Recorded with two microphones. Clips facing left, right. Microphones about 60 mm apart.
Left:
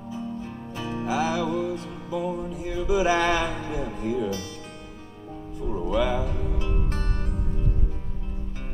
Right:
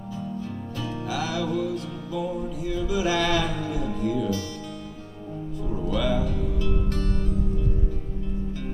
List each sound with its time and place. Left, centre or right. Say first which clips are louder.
0.4 s music: right 1 dB; left
5.9 s music: left 1 dB; left